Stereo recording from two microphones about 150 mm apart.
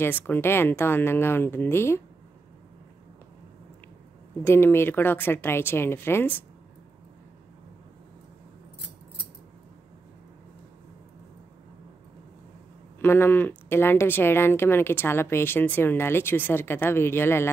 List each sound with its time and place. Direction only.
0.0 s speech: 15° left (ahead or behind)
4.5 s speech: 15° left (ahead or behind)
13.0 s speech: 15° left (ahead or behind)